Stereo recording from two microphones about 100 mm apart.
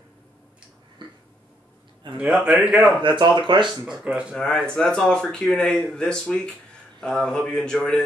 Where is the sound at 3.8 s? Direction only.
5° right (ahead or behind).